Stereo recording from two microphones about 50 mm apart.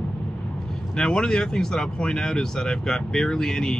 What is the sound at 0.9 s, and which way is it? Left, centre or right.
Speech, centre.